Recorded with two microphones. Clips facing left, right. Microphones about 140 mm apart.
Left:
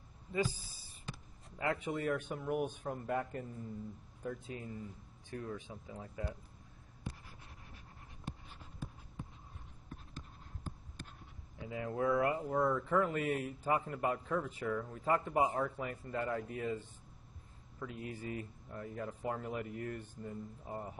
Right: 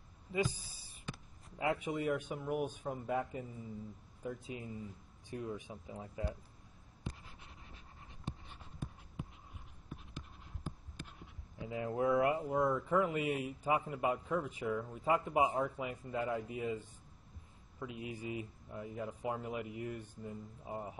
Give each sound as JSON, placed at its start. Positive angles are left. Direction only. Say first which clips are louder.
{"t": 0.4, "sound": "a sound", "louder": "even", "side_deg": 40}
{"t": 1.9, "sound": "a man's voice", "louder": "even", "side_deg": -5}
{"t": 11.6, "sound": "speech", "louder": "right 1 dB", "side_deg": -20}
{"t": 12.4, "sound": "speech", "louder": "even", "side_deg": -10}